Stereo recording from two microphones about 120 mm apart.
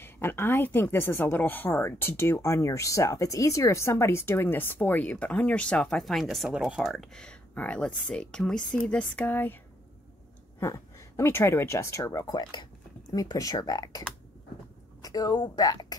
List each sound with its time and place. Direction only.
0.0 s speech: 20° left (ahead or behind)
10.6 s a woman's voice: 25° left (ahead or behind)